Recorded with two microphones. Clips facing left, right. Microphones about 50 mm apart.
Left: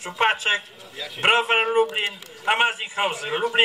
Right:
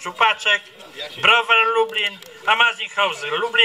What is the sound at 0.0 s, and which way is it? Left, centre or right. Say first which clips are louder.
A man's voice: right 3 dB; right.